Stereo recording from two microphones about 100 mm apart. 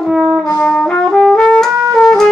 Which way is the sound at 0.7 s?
10° left (ahead or behind).